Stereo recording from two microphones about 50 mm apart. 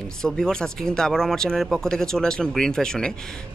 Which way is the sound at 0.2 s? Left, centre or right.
Centre.